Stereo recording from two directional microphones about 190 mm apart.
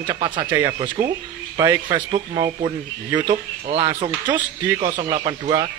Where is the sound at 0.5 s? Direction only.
10° right (ahead or behind).